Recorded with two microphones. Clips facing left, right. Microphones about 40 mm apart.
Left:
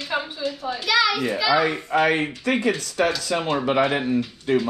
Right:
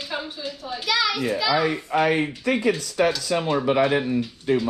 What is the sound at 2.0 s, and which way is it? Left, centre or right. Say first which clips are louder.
Speech: left 1 dB; left.